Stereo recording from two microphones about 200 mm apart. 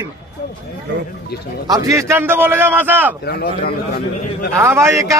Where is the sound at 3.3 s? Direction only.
50° left (ahead or behind).